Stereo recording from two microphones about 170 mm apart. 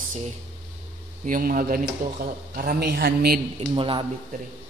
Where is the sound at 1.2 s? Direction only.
55° right (ahead or behind).